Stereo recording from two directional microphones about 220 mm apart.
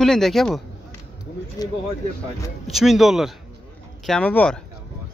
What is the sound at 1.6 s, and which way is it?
Speech, 15° left (ahead or behind).